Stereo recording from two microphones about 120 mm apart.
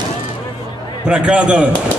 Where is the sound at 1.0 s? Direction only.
10° right (ahead or behind).